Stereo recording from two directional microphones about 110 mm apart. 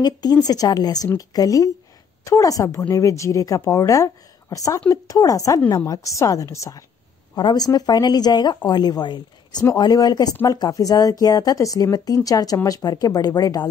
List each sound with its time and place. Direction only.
0.0 s a woman's voice: 40° left (ahead or behind)
7.3 s a woman's voice: 40° left (ahead or behind)